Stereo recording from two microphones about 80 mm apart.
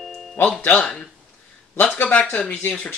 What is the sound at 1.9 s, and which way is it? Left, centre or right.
Speech, centre.